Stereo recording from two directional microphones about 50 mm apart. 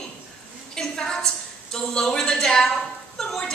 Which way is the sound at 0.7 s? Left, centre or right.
Centre.